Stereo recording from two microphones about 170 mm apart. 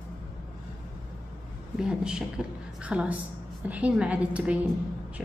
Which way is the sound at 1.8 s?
5° right (ahead or behind).